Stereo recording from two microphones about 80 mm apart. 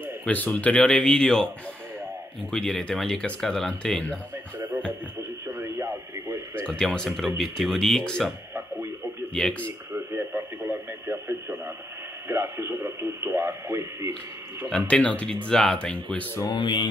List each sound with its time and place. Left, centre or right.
0.2 s speech: left
2.5 s speech: centre
5.6 s radio: right
6.7 s speech: centre
9.3 s speech: centre
9.9 s radio: right
14.7 s speech: centre
16.4 s speech: left